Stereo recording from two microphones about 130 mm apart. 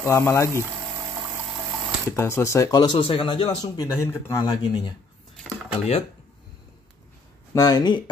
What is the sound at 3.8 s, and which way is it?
Speech, 30° left (ahead or behind).